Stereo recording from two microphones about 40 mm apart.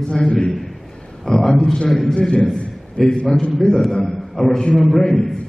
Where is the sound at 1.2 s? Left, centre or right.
Centre.